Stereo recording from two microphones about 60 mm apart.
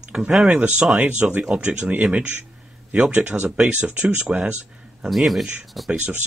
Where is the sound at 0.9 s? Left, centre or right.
Right.